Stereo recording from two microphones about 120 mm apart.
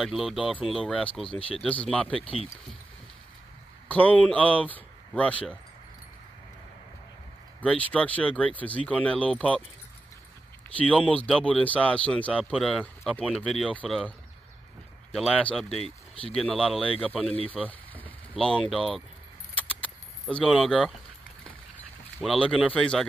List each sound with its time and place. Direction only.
0.0 s speech: centre (ahead or behind)
2.1 s speech: 50° left (ahead or behind)
3.9 s speech: 10° left (ahead or behind)
7.6 s speech: 10° left (ahead or behind)
11.1 s speech: 10° left (ahead or behind)
15.3 s speech: 5° left (ahead or behind)
18.3 s speech: 5° left (ahead or behind)
19.5 s keys jangling: 10° left (ahead or behind)
22.2 s speech: 5° left (ahead or behind)